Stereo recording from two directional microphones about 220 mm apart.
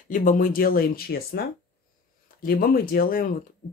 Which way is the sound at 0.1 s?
35° left (ahead or behind).